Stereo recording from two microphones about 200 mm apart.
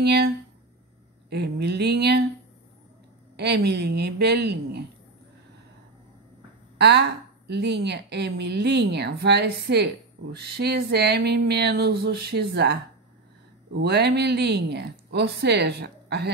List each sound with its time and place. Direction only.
0.0 s a woman's voice: 55° right (ahead or behind)
1.3 s a woman's voice: 55° right (ahead or behind)
3.3 s a woman's voice: 55° right (ahead or behind)
6.8 s a woman's voice: 55° right (ahead or behind)
13.7 s a woman's voice: 55° right (ahead or behind)